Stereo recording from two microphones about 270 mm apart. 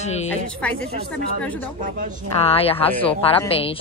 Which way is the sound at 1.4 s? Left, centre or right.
Centre.